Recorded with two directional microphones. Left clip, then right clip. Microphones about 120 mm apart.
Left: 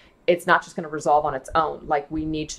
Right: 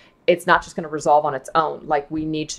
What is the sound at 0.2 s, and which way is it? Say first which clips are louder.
Speech: right 2 dB; 40° right (ahead or behind).